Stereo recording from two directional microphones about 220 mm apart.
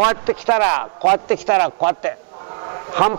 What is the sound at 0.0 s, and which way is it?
Speech, 20° right (ahead or behind).